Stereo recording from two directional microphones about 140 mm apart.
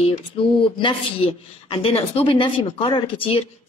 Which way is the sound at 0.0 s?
40° left (ahead or behind).